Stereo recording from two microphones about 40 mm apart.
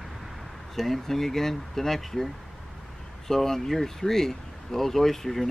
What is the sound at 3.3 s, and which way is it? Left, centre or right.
Speech, centre.